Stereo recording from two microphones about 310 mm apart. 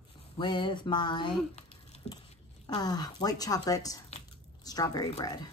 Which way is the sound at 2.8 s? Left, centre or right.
Centre.